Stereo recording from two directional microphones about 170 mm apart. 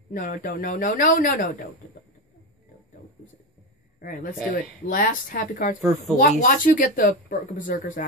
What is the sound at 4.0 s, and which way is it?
A woman's voice, 55° left (ahead or behind).